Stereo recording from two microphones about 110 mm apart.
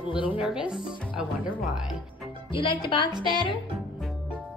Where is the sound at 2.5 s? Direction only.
50° left (ahead or behind).